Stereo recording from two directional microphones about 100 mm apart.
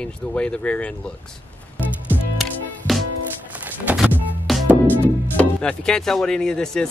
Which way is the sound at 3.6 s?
15° right (ahead or behind).